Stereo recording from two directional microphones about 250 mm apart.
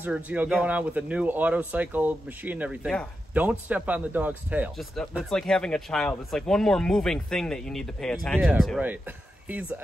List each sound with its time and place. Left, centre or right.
0.0 s speech: centre